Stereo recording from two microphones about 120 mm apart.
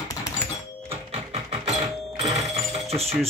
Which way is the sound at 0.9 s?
60° right (ahead or behind).